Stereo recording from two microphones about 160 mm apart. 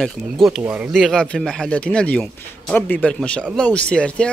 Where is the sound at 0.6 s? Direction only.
10° right (ahead or behind).